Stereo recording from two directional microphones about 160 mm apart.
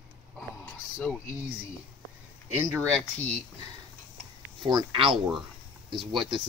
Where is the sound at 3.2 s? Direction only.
10° left (ahead or behind).